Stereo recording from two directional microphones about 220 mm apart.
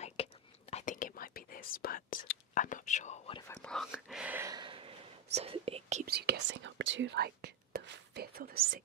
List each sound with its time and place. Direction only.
0.0 s whispering: 30° left (ahead or behind)
3.4 s whispering: 5° left (ahead or behind); by 6.0 s 30° right (ahead or behind)
6.0 s speech: 45° right (ahead or behind)